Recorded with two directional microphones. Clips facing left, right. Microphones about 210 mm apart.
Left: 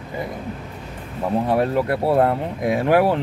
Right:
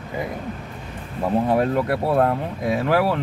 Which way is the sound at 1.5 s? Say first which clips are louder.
Even; 5° left (ahead or behind).